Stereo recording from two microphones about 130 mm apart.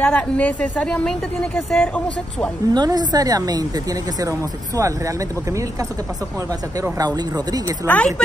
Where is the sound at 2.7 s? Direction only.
30° right (ahead or behind).